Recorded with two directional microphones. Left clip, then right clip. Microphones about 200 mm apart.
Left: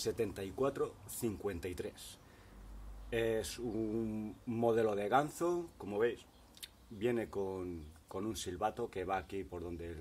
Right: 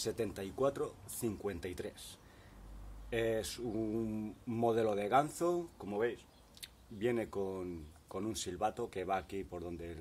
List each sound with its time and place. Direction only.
0.0 s speech: 5° right (ahead or behind)
3.1 s speech: 10° right (ahead or behind)